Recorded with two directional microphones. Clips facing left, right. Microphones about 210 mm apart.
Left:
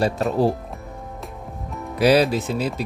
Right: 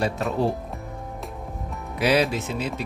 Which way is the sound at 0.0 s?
35° left (ahead or behind).